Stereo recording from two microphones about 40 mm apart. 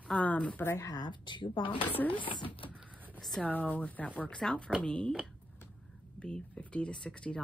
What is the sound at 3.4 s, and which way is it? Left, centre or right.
Speech, left.